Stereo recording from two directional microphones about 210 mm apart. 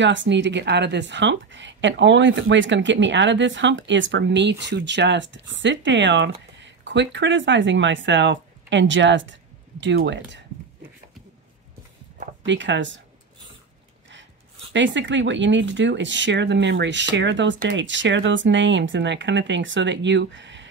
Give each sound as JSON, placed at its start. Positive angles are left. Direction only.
{"t": 0.0, "sound": "a woman's voice", "side_deg": -60}
{"t": 12.4, "sound": "a woman's voice", "side_deg": -60}
{"t": 14.7, "sound": "a woman's voice", "side_deg": -60}